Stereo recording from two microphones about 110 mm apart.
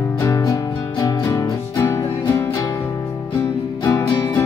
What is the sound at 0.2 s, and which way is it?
Music, 30° left (ahead or behind).